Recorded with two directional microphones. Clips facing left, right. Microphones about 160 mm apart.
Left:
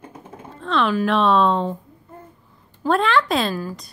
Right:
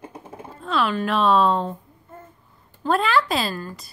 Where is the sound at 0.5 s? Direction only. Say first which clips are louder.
Left 2 dB; 5° right (ahead or behind).